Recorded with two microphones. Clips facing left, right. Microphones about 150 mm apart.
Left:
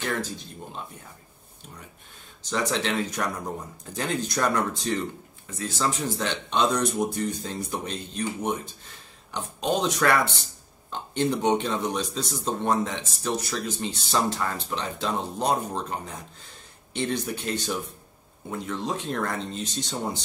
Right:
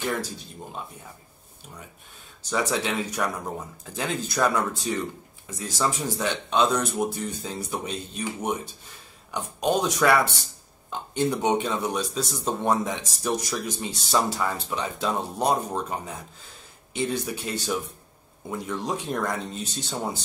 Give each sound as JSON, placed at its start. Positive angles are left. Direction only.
{"t": 2.5, "sound": "speech", "side_deg": -10}
{"t": 16.9, "sound": "speech", "side_deg": -5}
{"t": 18.7, "sound": "speech", "side_deg": -10}